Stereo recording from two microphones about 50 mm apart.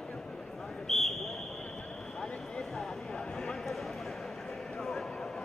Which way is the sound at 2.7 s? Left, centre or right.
Centre.